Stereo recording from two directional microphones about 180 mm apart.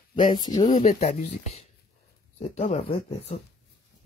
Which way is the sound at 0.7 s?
40° left (ahead or behind).